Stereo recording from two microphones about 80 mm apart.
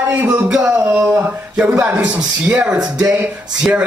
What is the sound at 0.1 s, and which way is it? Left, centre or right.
Speech, centre.